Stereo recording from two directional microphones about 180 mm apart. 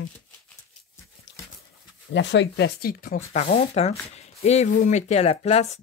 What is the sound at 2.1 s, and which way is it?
Speech, 85° left.